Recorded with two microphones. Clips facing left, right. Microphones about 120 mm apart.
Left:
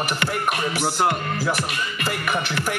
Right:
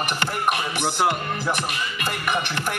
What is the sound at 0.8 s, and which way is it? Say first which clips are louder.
Speech: left 2 dB; centre (ahead or behind).